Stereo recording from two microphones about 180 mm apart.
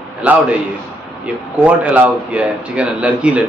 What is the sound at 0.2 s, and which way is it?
Speech, 10° right (ahead or behind).